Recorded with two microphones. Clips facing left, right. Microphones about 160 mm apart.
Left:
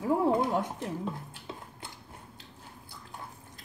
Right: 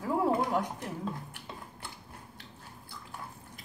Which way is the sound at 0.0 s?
25° left (ahead or behind).